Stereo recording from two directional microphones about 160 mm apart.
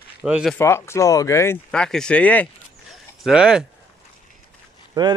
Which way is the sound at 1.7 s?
5° left (ahead or behind).